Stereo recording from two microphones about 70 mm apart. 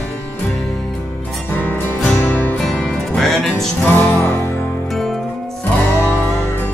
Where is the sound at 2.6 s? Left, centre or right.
Centre.